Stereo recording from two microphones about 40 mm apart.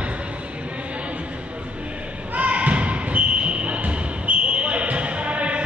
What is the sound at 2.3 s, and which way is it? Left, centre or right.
Basketball bounce, right.